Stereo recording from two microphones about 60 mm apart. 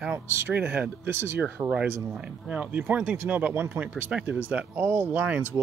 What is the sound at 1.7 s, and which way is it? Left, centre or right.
Speech, right.